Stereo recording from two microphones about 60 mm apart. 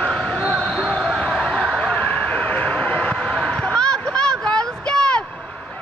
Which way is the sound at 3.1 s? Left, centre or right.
Centre.